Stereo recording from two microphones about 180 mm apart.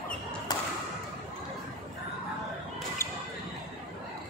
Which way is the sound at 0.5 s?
25° left (ahead or behind).